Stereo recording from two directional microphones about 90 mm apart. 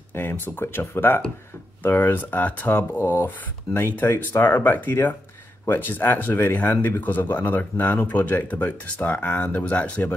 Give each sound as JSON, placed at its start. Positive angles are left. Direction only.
{"t": 0.1, "sound": "speech", "side_deg": 25}